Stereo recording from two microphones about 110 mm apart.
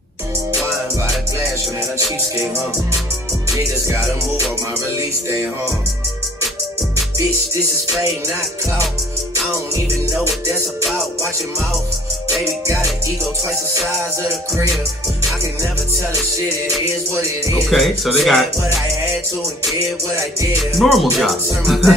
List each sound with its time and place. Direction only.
3.8 s music: 30° right (ahead or behind)
17.1 s music: 25° right (ahead or behind)
17.6 s speech: centre (ahead or behind)
20.7 s speech: centre (ahead or behind)